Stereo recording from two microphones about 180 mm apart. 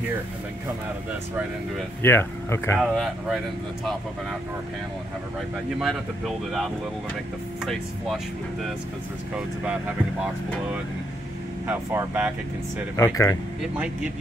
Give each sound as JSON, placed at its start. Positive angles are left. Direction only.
{"t": 2.0, "sound": "speech", "side_deg": 15}
{"t": 2.8, "sound": "speech", "side_deg": 0}
{"t": 5.8, "sound": "speech", "side_deg": 0}
{"t": 11.6, "sound": "speech", "side_deg": -15}
{"t": 12.9, "sound": "speech", "side_deg": 15}
{"t": 13.6, "sound": "speech", "side_deg": -5}